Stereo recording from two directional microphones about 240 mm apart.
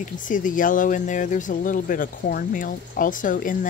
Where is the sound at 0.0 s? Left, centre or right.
Left.